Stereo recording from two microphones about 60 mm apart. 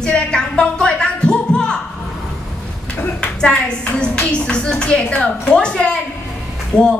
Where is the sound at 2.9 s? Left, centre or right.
Left.